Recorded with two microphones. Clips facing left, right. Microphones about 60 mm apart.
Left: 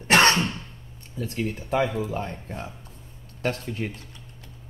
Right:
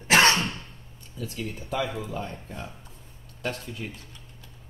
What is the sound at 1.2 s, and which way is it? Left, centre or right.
Speech, left.